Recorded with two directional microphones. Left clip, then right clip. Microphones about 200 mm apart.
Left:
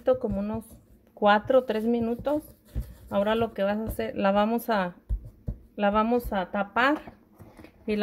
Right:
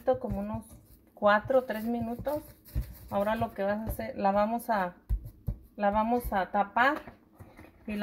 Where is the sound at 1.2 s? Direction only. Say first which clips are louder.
Left 4 dB; 50° left (ahead or behind).